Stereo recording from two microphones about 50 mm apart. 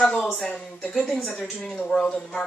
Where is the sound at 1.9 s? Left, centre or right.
Centre.